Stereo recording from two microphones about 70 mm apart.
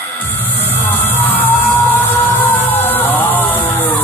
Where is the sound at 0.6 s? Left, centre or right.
Left.